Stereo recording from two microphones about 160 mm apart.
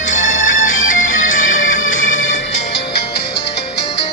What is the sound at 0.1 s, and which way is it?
Music, 50° left (ahead or behind).